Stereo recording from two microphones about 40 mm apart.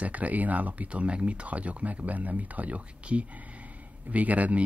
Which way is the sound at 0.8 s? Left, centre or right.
Right.